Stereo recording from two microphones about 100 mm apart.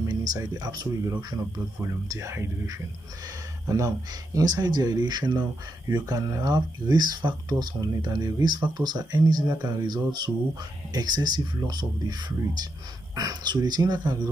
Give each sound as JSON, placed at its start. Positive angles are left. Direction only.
{"t": 0.0, "sound": "speech", "side_deg": -40}